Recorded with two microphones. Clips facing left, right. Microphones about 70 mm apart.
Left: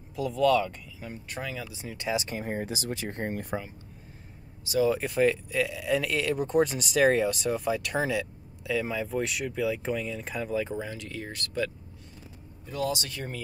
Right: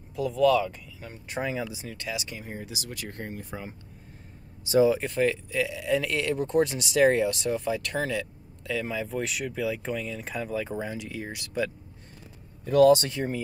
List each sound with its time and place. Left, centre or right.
0.1 s speech: centre
1.3 s speech: right
2.1 s speech: left
3.3 s speech: left
4.8 s speech: centre
10.8 s speech: centre
12.6 s speech: right
13.1 s speech: centre